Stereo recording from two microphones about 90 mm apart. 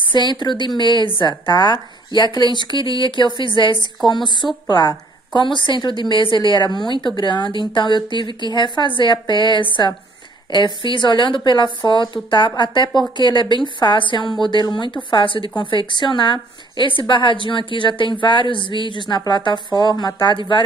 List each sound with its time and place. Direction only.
0.1 s a woman's voice: 60° left (ahead or behind)